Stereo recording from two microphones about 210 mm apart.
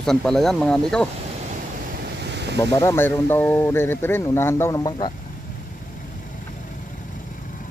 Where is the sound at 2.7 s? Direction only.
15° left (ahead or behind).